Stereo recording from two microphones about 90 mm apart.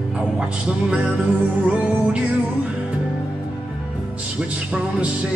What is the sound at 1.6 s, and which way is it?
Music, 15° right (ahead or behind).